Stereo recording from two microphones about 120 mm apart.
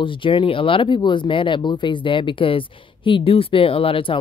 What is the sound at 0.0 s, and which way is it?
Speech, 45° left (ahead or behind).